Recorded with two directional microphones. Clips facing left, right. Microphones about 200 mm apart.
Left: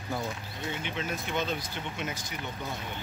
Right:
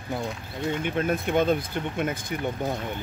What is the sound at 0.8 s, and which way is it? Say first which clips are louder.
Speech: right 9 dB; 55° right (ahead or behind).